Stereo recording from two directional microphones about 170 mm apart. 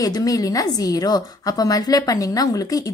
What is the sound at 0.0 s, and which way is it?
A woman's voice, 20° left (ahead or behind).